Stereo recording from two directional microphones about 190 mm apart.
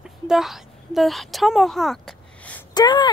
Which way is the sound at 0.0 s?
Centre (ahead or behind).